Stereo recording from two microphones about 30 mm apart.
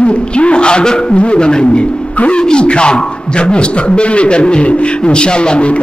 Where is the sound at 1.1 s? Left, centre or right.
Left.